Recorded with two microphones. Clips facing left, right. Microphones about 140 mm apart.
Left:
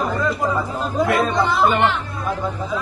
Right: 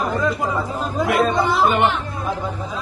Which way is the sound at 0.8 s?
Centre (ahead or behind).